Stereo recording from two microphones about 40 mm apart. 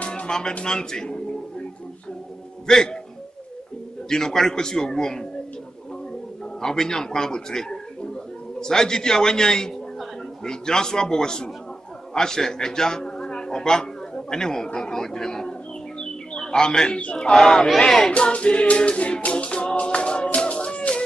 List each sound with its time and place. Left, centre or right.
0.1 s music: centre
2.6 s a man's voice: centre
4.1 s a man's voice: centre
6.6 s a man's voice: centre
16.0 s bird: centre
17.0 s music: left
17.3 s a man's voice: centre
18.1 s music: left